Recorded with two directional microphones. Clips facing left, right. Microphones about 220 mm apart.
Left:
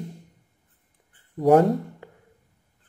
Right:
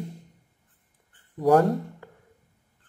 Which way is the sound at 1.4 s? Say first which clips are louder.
Left 2 dB; 20° left (ahead or behind).